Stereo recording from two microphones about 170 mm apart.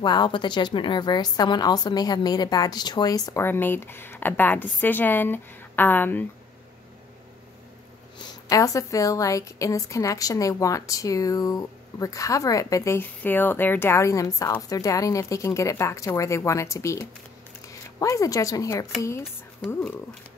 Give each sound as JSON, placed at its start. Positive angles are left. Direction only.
{"t": 0.0, "sound": "a woman's voice", "side_deg": 25}
{"t": 8.5, "sound": "a woman's voice", "side_deg": 20}